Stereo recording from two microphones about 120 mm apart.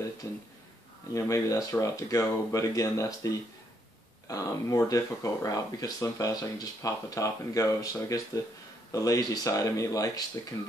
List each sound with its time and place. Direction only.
0.2 s speech: 25° left (ahead or behind)